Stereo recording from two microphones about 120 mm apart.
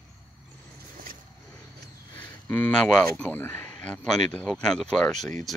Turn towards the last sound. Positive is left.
turn(degrees=5)  # may be behind; listen again after turning